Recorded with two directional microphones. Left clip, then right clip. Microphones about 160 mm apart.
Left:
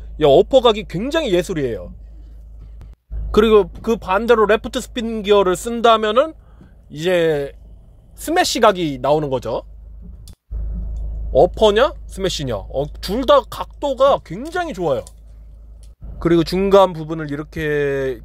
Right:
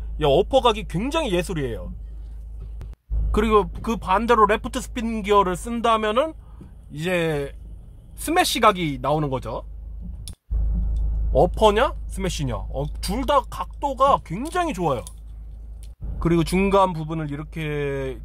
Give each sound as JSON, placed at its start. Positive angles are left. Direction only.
{"t": 0.2, "sound": "speech", "side_deg": 20}
{"t": 3.3, "sound": "speech", "side_deg": 25}
{"t": 11.3, "sound": "speech", "side_deg": 15}
{"t": 14.4, "sound": "speech", "side_deg": 5}
{"t": 16.2, "sound": "speech", "side_deg": 20}